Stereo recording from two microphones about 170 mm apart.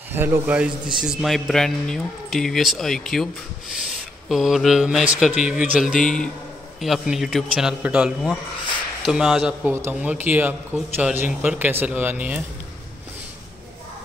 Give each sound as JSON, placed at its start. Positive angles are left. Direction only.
{"t": 0.1, "sound": "speech", "side_deg": -10}
{"t": 4.3, "sound": "speech", "side_deg": 0}